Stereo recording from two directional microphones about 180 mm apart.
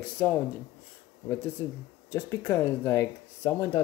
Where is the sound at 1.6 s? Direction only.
20° left (ahead or behind).